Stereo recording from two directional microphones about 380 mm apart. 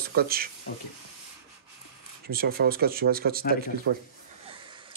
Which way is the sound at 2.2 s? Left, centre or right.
Right.